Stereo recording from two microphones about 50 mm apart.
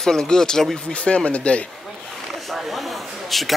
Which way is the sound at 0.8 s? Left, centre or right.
Left.